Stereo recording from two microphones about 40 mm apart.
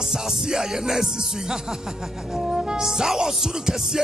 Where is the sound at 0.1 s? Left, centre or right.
Centre.